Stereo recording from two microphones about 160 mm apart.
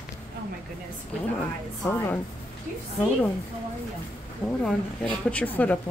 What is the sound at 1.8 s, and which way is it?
Speech, 15° left (ahead or behind).